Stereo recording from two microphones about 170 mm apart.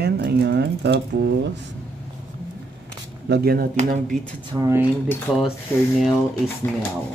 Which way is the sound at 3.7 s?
45° right (ahead or behind).